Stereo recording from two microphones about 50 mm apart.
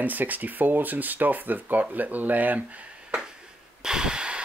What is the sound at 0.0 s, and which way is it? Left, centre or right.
Speech, right.